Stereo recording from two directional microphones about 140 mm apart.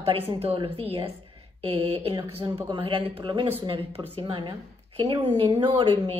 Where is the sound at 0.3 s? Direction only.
40° right (ahead or behind).